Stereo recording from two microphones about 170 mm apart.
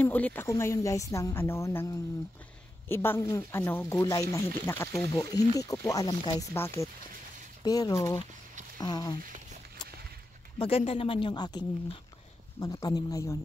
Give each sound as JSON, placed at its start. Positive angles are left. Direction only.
{"t": 0.0, "sound": "a woman's voice", "side_deg": 10}
{"t": 10.6, "sound": "speech", "side_deg": 35}